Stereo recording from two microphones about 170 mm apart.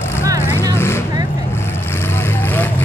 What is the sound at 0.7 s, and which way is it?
Vehicle, 15° left (ahead or behind).